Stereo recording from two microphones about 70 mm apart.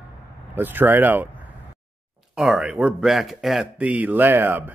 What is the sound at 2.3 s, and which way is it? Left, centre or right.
Speech, centre.